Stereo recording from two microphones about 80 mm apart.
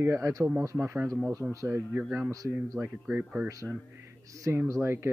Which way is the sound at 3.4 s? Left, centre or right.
Right.